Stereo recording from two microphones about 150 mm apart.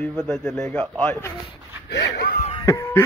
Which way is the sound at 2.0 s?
90° left.